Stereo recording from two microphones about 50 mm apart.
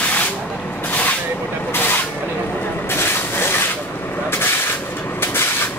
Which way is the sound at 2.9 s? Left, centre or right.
Left.